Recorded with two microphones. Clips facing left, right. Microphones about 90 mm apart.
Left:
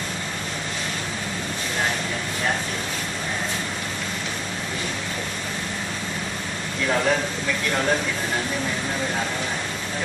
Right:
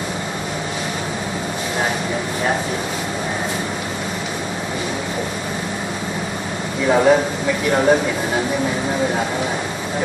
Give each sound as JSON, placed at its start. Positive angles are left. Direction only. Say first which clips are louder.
{"t": 6.8, "sound": "speech", "louder": "right 8 dB", "side_deg": -15}